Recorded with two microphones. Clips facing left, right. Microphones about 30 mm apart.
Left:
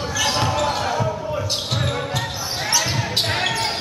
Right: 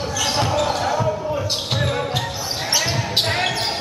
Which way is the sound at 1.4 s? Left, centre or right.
Centre.